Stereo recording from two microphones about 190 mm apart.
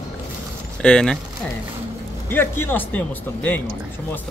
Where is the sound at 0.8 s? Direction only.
5° left (ahead or behind).